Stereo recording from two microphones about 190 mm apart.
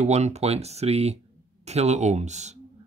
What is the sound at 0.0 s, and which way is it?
Speech, 35° right (ahead or behind).